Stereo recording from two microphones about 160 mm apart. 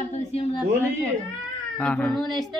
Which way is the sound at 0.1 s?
45° left (ahead or behind).